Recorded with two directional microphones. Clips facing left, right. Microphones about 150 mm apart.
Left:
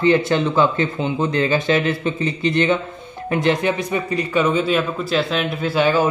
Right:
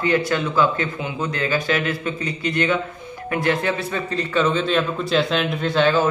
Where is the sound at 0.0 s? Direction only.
25° left (ahead or behind).